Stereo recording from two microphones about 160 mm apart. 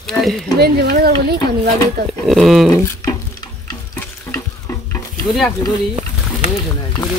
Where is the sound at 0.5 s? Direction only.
75° right (ahead or behind).